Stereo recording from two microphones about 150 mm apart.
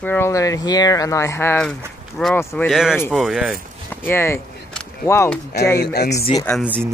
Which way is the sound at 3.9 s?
15° left (ahead or behind).